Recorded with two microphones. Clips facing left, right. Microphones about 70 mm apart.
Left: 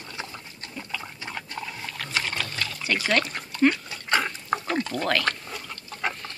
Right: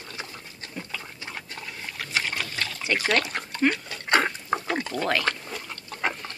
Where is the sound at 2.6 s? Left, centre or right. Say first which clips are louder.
Right 1 dB; right.